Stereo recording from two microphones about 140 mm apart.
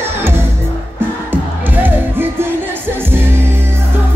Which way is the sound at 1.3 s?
15° right (ahead or behind).